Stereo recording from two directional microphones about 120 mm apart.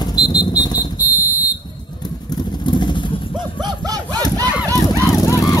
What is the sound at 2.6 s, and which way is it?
Vehicle, 40° left (ahead or behind).